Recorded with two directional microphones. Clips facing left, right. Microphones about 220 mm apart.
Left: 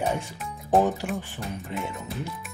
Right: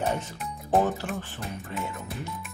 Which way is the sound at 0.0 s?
10° left (ahead or behind).